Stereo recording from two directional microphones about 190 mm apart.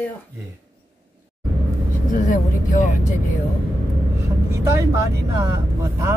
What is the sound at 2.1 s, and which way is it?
Speech, 40° left (ahead or behind).